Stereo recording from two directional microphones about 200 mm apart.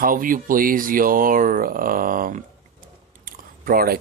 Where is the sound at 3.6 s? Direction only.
50° right (ahead or behind).